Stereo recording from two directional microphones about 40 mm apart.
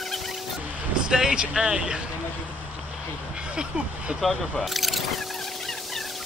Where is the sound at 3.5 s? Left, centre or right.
Right.